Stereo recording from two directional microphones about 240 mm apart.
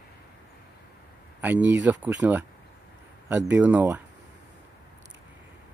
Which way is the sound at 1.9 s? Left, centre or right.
Centre.